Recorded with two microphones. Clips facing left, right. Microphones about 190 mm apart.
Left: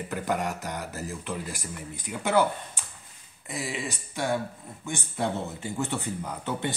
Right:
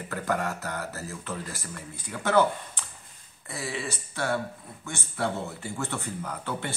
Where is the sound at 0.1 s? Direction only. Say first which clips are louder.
Even; 15° left (ahead or behind).